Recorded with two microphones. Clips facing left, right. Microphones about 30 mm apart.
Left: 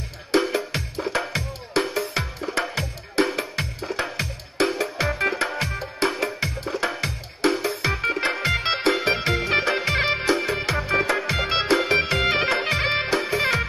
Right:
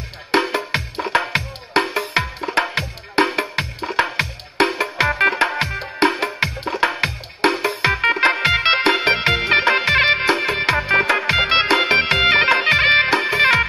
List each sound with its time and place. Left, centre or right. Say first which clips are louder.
0.3 s music: right 3 dB; right